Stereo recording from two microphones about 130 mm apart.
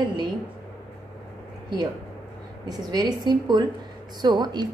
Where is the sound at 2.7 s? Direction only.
30° right (ahead or behind).